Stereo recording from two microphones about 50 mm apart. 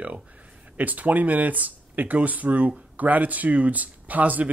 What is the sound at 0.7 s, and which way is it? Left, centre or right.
Speech, right.